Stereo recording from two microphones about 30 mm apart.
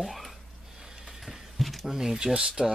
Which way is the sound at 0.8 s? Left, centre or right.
Centre.